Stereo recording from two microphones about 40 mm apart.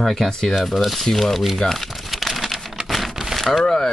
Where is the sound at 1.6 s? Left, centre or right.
Centre.